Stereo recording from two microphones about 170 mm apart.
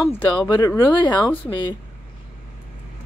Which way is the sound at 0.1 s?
25° left (ahead or behind).